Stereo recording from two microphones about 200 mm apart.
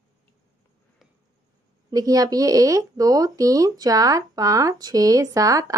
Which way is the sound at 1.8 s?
20° right (ahead or behind).